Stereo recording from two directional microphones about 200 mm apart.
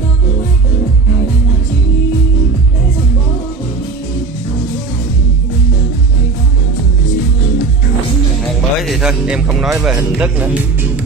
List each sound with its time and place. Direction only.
8.5 s music: centre (ahead or behind)
9.9 s speech: 10° right (ahead or behind)